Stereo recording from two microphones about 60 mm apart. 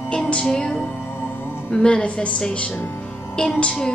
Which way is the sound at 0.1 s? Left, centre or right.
Centre.